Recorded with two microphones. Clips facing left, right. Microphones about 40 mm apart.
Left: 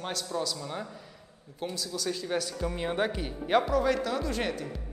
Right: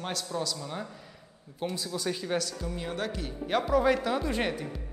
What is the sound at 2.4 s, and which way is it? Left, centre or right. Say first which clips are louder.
A man's voice: left 2 dB; left.